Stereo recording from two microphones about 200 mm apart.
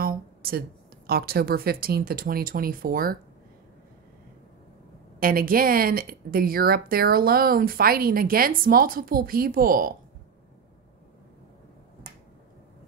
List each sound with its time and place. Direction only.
0.0 s speech: 50° right (ahead or behind)
5.2 s speech: 45° right (ahead or behind)